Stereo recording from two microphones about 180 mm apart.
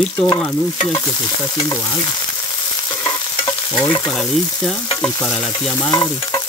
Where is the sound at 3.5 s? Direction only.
25° left (ahead or behind).